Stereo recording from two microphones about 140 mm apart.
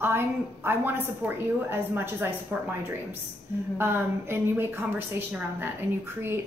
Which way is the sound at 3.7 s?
15° right (ahead or behind).